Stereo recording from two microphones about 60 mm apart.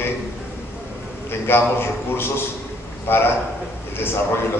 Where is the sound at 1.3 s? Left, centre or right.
Left.